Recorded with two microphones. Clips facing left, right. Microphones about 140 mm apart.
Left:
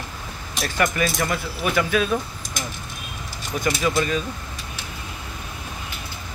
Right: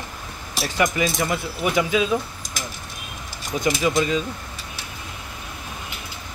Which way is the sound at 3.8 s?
15° right (ahead or behind).